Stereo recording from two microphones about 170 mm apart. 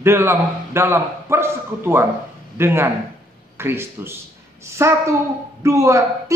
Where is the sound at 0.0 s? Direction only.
15° right (ahead or behind).